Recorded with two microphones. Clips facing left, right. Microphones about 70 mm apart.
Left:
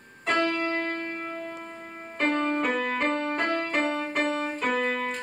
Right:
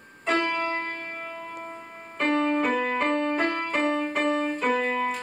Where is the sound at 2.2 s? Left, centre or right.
Centre.